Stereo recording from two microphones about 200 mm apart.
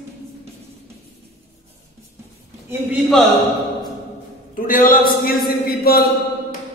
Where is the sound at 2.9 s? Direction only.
Centre (ahead or behind).